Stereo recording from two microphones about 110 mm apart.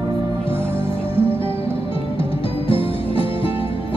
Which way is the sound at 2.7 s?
55° left (ahead or behind).